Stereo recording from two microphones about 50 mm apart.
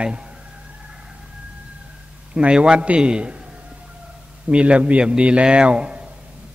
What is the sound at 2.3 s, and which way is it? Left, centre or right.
A man's voice, centre.